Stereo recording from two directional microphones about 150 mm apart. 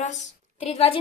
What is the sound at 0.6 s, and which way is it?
Speech, 45° left (ahead or behind).